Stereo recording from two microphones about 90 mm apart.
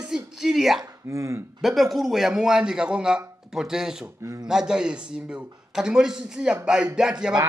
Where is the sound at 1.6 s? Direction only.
Centre (ahead or behind).